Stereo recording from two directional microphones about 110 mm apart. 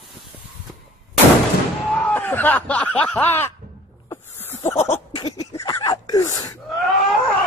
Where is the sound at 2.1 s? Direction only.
15° left (ahead or behind).